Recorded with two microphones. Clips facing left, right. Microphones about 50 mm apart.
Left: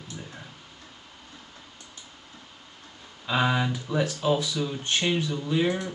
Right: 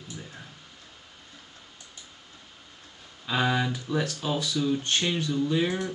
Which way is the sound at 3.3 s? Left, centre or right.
Centre.